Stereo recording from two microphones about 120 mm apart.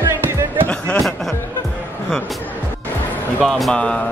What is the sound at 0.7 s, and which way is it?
Speech, 5° left (ahead or behind).